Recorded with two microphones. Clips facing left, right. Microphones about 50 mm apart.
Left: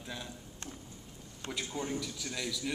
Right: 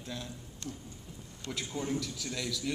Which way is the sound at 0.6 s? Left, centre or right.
Left.